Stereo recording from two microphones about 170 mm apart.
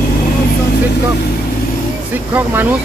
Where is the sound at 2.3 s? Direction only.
10° right (ahead or behind).